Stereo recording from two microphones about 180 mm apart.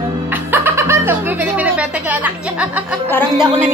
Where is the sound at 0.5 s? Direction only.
15° right (ahead or behind).